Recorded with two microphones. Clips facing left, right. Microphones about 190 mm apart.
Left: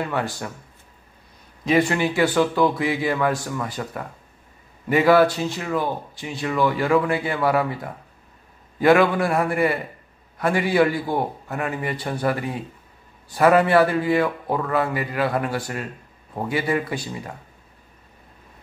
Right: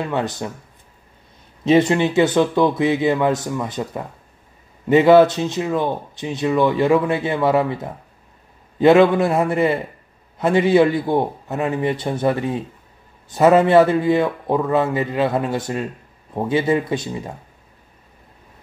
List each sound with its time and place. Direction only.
0.0 s speech: 20° right (ahead or behind)
1.6 s speech: 25° right (ahead or behind)